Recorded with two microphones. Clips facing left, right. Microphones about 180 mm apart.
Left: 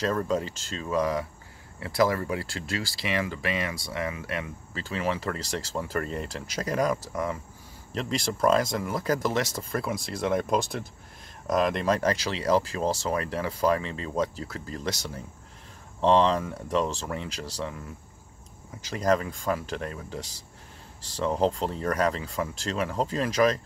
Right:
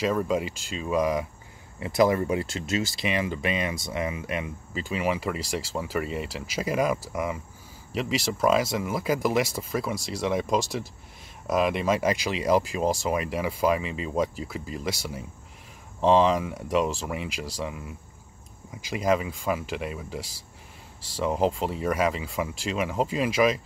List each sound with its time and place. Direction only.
0.0 s speech: 10° right (ahead or behind)